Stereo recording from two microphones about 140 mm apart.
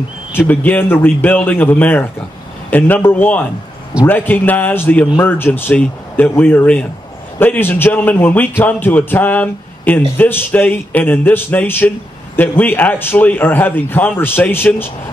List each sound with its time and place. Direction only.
0.3 s a man's voice: 15° left (ahead or behind)